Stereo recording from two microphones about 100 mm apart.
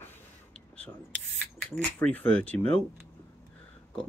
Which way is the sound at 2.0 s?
15° left (ahead or behind).